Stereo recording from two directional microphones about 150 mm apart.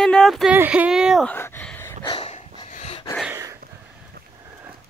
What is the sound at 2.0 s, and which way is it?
Dog, 40° left (ahead or behind).